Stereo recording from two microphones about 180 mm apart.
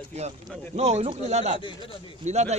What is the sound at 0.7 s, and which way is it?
Speech, 35° right (ahead or behind).